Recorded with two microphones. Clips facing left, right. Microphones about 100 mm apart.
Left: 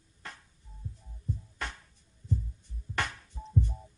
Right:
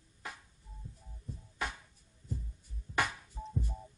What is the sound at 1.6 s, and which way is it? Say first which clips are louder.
Music: right 6 dB; 5° right (ahead or behind).